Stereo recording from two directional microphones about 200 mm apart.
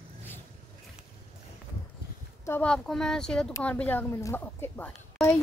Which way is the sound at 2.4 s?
5° left (ahead or behind).